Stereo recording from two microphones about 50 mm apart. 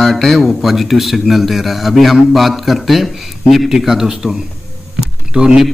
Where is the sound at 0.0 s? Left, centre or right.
Centre.